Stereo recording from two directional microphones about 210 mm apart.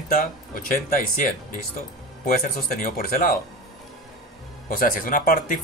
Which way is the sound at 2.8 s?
45° left (ahead or behind).